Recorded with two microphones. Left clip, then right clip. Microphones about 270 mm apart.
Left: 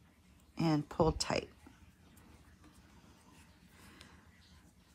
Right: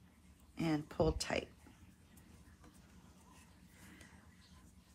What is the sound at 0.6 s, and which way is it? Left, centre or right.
Speech, left.